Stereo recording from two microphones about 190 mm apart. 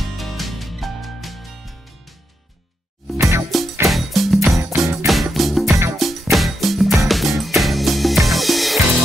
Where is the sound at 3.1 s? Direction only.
15° right (ahead or behind).